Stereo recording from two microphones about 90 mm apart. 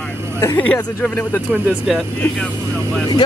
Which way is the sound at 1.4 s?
20° right (ahead or behind).